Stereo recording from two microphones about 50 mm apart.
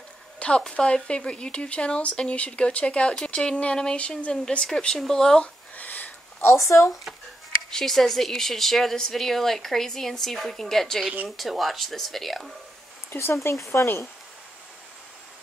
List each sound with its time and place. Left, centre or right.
0.4 s speech: centre
5.4 s a sound: left
6.4 s speech: left
7.7 s a woman's voice: centre
13.3 s speech: left